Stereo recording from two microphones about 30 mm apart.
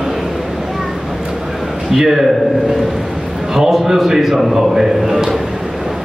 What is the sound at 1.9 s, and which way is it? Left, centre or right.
Speech, centre.